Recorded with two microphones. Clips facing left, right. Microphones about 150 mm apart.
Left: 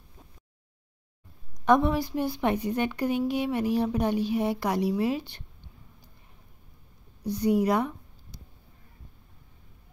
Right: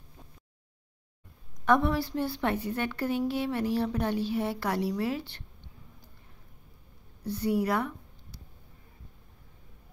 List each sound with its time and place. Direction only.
1.6 s a woman's voice: 20° left (ahead or behind)
7.2 s a woman's voice: 15° left (ahead or behind)